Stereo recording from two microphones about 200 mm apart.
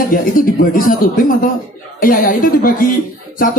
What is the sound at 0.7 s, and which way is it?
A man's voice, 45° left (ahead or behind).